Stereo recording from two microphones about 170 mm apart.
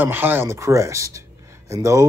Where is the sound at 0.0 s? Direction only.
10° right (ahead or behind).